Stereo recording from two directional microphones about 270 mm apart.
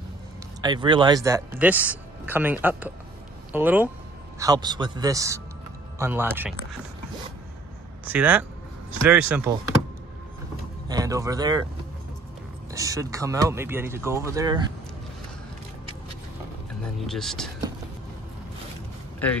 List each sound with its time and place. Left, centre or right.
0.6 s speech: centre
8.1 s speech: centre
10.9 s speech: centre
12.7 s speech: centre
17.0 s speech: centre